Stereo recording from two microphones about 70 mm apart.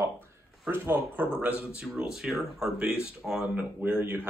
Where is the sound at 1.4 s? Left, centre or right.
Centre.